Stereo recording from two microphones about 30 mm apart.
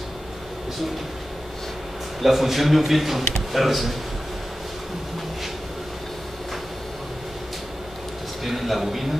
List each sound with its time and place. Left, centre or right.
2.2 s a man's voice: centre
8.5 s a man's voice: centre